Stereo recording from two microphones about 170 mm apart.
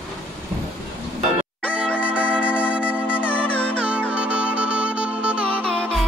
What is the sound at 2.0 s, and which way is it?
Music, 5° right (ahead or behind).